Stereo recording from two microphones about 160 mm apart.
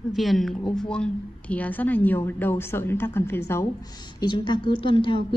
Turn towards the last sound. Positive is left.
turn(degrees=30)  # may be behind; listen again after turning